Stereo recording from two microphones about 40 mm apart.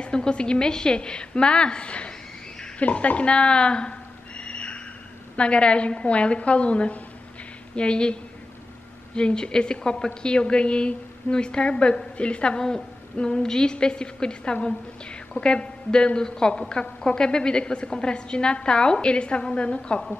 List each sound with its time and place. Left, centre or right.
0.0 s a woman's voice: left
4.4 s a sound: left
5.3 s a woman's voice: left